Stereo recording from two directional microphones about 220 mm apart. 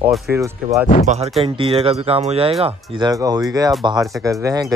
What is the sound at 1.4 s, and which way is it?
Speech, 25° right (ahead or behind).